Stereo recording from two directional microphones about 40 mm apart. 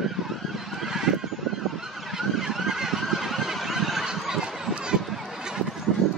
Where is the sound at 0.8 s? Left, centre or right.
Centre.